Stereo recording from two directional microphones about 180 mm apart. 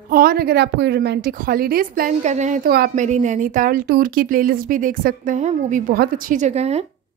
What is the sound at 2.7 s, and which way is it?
Speech, 55° right (ahead or behind).